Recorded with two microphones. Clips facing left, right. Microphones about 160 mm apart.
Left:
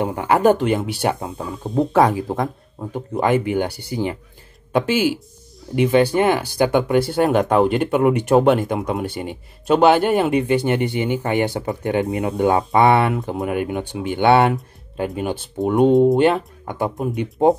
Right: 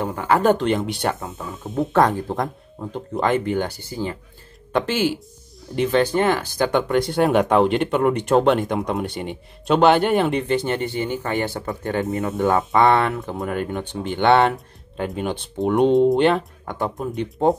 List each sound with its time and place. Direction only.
0.0 s speech: 10° left (ahead or behind)